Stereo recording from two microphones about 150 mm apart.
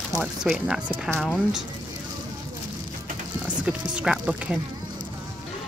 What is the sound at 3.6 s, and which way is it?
Speech, 10° right (ahead or behind).